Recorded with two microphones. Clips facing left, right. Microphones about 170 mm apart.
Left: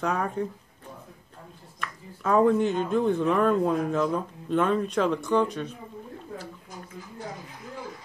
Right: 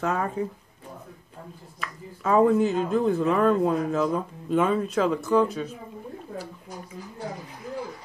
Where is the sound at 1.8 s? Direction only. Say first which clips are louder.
Right 1 dB; centre (ahead or behind).